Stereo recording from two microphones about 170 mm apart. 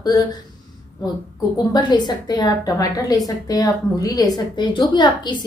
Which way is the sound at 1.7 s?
25° left (ahead or behind).